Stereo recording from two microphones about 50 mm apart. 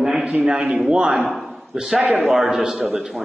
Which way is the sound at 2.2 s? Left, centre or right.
Centre.